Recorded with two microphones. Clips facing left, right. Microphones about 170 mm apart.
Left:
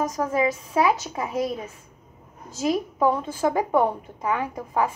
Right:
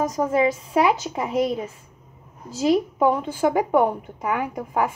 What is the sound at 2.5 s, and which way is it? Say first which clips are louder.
Speech: right 5 dB; 30° right (ahead or behind).